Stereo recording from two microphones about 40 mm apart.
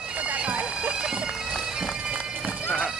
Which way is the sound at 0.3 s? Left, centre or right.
Right.